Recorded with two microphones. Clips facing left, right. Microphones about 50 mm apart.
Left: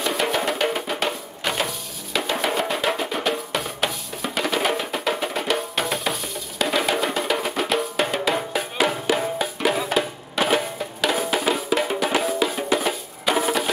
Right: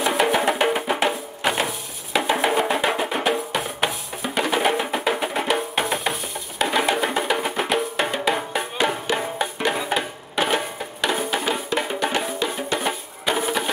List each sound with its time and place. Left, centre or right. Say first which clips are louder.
0.0 s music: right 3 dB; centre
2.1 s drum: right 3 dB; centre
2.7 s percussion: right 2 dB; centre
4.5 s music: right 2 dB; centre